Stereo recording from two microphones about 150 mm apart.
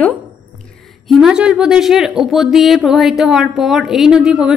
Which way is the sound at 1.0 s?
Centre (ahead or behind).